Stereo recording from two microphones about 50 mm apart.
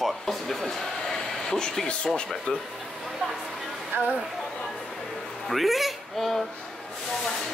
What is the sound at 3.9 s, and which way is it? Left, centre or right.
Speech, right.